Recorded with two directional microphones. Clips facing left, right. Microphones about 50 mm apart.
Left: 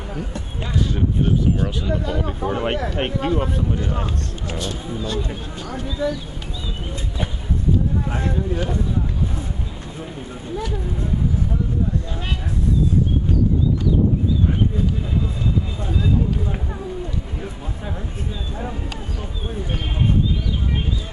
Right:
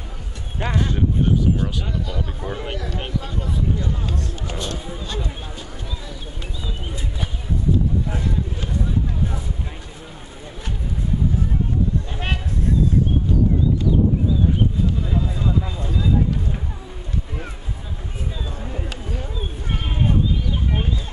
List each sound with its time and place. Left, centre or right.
0.6 s speech: right
0.9 s speech: centre
2.0 s speech: left
2.5 s speech: left
4.8 s speech: centre
8.1 s speech: left